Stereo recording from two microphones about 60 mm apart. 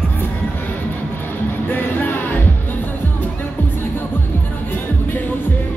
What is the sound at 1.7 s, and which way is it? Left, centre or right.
Music, left.